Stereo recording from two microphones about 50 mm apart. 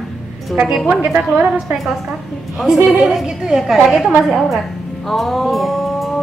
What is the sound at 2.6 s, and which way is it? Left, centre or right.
A woman's voice, centre.